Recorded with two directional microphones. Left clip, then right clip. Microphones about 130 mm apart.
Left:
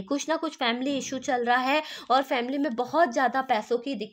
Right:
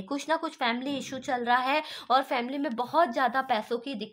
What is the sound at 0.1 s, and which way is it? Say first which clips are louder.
A woman's voice: left 1 dB; 30° left (ahead or behind).